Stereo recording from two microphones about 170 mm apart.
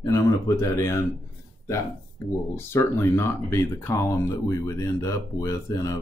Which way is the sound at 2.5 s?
15° left (ahead or behind).